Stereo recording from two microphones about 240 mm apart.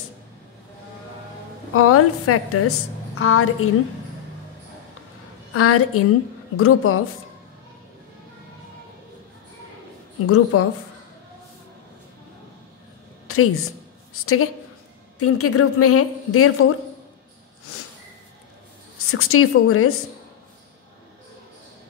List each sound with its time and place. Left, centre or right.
1.7 s a woman's voice: left
5.5 s a woman's voice: left
10.2 s a woman's voice: left
13.3 s a sound: left
14.2 s a woman's voice: left
18.9 s a woman's voice: left